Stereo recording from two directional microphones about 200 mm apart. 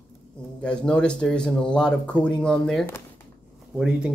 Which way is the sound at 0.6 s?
5° left (ahead or behind).